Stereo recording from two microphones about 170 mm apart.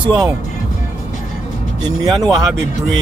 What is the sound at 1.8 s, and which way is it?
Speech, 25° right (ahead or behind).